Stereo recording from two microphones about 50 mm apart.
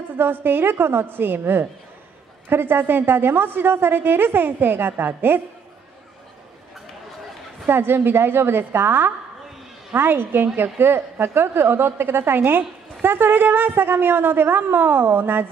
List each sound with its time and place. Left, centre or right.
0.2 s a woman's voice: right
7.6 s a woman's voice: right